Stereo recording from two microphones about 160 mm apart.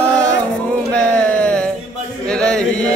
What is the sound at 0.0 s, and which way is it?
Music, 5° left (ahead or behind).